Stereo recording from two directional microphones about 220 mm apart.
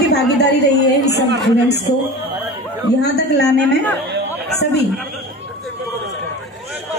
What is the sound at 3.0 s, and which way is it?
Speech, 50° left (ahead or behind).